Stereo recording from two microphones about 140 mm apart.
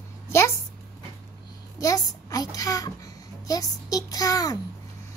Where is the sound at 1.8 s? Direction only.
25° left (ahead or behind).